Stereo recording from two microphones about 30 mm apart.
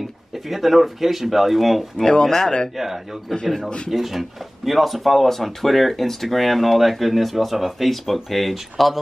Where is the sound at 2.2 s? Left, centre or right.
Centre.